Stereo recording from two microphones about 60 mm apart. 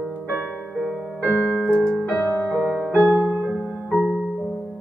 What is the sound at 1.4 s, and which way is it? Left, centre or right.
Piano, left.